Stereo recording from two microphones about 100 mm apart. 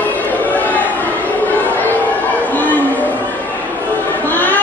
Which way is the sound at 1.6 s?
15° left (ahead or behind).